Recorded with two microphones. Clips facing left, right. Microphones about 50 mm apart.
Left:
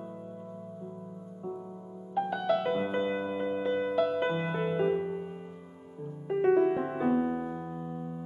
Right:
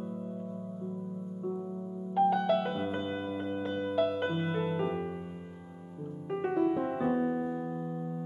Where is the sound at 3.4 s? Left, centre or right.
Centre.